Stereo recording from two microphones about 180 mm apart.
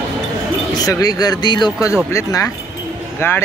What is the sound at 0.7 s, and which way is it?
Speech, 20° left (ahead or behind).